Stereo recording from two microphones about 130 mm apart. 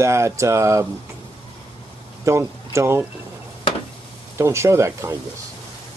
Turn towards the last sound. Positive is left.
turn(degrees=-25)  # may be behind; listen again after turning